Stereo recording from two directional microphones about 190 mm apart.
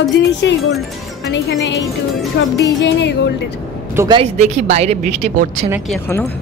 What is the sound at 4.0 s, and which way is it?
Speech, 25° right (ahead or behind).